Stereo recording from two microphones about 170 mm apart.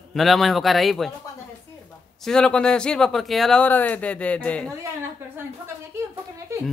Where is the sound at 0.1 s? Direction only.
Centre (ahead or behind).